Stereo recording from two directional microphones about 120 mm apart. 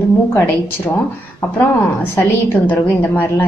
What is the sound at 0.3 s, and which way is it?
Speech, 20° left (ahead or behind).